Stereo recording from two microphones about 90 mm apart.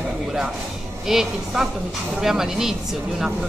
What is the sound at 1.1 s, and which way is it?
A woman's voice, 5° right (ahead or behind).